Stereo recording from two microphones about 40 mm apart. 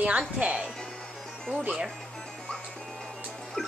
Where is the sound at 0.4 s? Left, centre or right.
Right.